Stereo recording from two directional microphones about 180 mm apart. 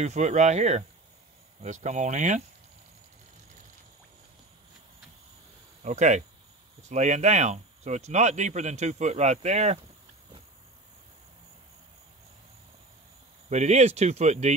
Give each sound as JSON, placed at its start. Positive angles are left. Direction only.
{"t": 0.0, "sound": "a man's voice", "side_deg": -40}
{"t": 5.8, "sound": "a man's voice", "side_deg": -40}
{"t": 13.5, "sound": "a man's voice", "side_deg": -40}